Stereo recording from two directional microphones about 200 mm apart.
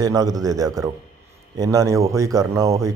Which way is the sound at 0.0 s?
20° right (ahead or behind).